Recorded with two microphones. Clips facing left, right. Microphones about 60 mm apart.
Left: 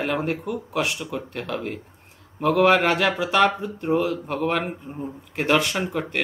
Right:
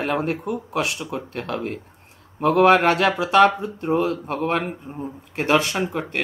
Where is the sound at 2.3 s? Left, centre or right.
Right.